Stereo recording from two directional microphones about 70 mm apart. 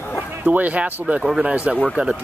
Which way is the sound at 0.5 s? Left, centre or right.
Right.